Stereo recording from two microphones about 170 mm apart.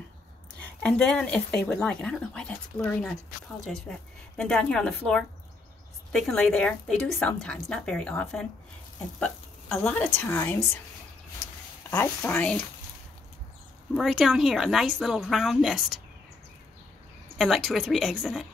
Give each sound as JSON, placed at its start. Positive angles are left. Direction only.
{"t": 0.6, "sound": "speech", "side_deg": 5}
{"t": 11.9, "sound": "speech", "side_deg": 10}
{"t": 13.9, "sound": "speech", "side_deg": 0}
{"t": 17.4, "sound": "speech", "side_deg": 0}